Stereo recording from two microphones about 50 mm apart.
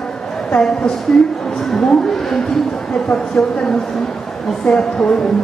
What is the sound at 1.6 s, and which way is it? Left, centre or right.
Speech, centre.